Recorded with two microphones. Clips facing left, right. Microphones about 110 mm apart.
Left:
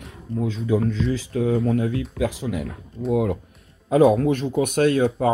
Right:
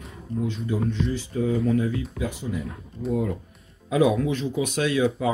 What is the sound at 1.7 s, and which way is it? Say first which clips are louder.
Speech: left 1 dB; 60° left (ahead or behind).